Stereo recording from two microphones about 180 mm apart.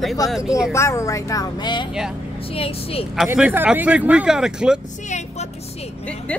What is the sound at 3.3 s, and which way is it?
Speech, 10° right (ahead or behind).